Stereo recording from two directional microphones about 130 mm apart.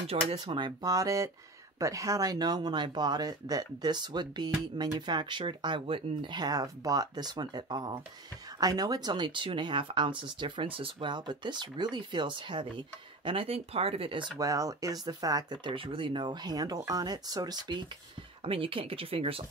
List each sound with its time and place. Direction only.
0.3 s speech: 40° right (ahead or behind)
14.4 s speech: 25° right (ahead or behind)
18.4 s speech: 45° right (ahead or behind)